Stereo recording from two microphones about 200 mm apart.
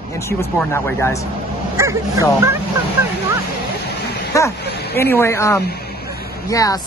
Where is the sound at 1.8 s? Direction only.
15° right (ahead or behind).